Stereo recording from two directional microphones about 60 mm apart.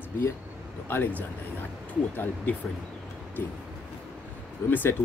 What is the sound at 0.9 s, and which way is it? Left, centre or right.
Speech, left.